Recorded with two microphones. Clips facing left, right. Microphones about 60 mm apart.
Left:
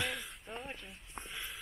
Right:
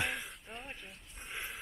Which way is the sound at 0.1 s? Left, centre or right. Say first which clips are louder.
Even; centre.